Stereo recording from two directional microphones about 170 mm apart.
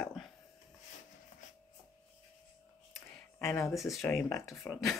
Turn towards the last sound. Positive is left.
turn(degrees=0)  # may be behind; listen again after turning